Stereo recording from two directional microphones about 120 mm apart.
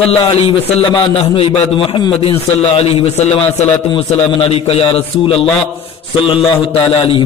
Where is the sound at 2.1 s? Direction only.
55° left (ahead or behind).